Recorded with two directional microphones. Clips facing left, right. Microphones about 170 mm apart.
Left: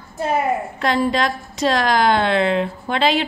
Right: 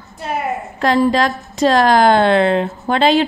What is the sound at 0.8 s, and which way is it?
A woman's voice, 40° right (ahead or behind).